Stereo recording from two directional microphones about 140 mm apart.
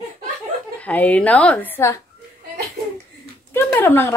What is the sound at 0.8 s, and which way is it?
A woman's voice, 10° left (ahead or behind).